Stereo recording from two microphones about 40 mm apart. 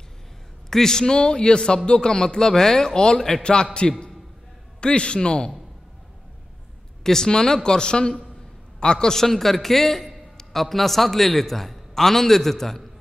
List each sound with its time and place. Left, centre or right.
0.7 s a man's voice: centre
7.0 s a man's voice: centre